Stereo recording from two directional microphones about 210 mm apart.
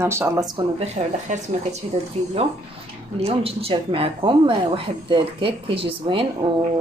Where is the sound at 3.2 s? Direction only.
25° right (ahead or behind).